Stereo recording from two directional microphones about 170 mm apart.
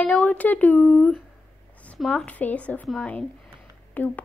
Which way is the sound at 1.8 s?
10° left (ahead or behind).